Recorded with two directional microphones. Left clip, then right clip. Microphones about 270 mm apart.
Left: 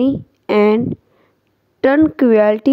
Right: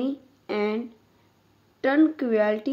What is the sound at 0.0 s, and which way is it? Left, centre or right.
Speech, left.